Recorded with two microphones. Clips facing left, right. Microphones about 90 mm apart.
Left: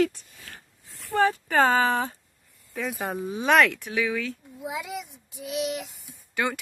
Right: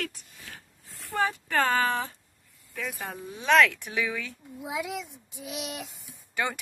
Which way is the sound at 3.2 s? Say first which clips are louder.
Left 9 dB; 70° left (ahead or behind).